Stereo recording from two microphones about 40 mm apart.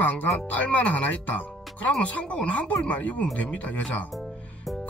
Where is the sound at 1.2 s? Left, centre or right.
Left.